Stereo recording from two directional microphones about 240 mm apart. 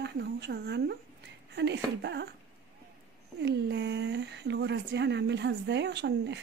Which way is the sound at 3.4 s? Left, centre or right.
Right.